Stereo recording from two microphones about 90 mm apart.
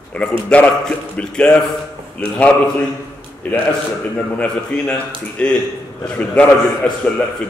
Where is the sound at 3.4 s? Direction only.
15° left (ahead or behind).